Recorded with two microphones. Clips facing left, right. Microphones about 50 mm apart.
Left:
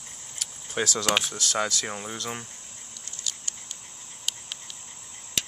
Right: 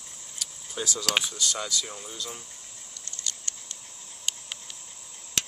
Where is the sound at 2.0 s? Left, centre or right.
Left.